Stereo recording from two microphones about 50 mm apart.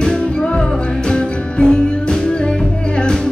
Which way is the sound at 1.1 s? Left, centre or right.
Centre.